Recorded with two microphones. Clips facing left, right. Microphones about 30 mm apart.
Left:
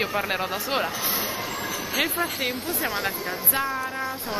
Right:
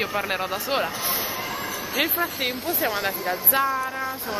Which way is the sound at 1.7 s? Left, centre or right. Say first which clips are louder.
Left 1 dB; left.